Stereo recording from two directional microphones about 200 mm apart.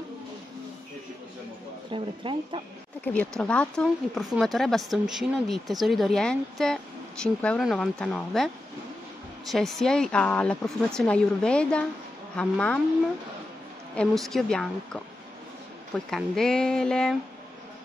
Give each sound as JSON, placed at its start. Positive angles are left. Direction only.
{"t": 1.9, "sound": "speech", "side_deg": -25}
{"t": 3.1, "sound": "speech", "side_deg": 5}
{"t": 9.5, "sound": "speech", "side_deg": 0}
{"t": 13.9, "sound": "speech", "side_deg": 0}
{"t": 16.1, "sound": "speech", "side_deg": 0}